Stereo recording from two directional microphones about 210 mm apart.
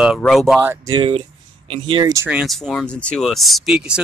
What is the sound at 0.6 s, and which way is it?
Speech, 15° right (ahead or behind).